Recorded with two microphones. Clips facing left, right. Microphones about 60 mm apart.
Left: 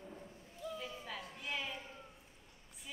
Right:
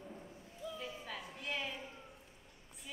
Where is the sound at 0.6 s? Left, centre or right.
Left.